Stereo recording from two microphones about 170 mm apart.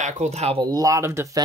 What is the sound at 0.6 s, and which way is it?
Speech, 20° right (ahead or behind).